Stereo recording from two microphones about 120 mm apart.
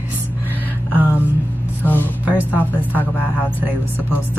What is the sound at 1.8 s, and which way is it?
Vehicle, 15° left (ahead or behind).